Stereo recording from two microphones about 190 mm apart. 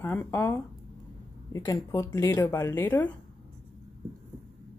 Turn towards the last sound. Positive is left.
turn(degrees=10)  # may be behind; listen again after turning